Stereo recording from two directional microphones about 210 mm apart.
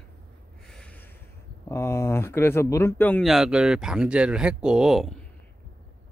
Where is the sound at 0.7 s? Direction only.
5° left (ahead or behind).